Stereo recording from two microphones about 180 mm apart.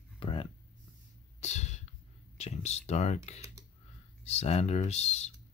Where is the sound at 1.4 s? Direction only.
40° left (ahead or behind).